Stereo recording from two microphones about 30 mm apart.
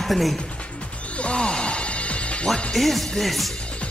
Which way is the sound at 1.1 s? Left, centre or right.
Left.